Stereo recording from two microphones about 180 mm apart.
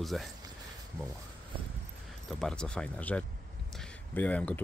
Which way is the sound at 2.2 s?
Centre (ahead or behind).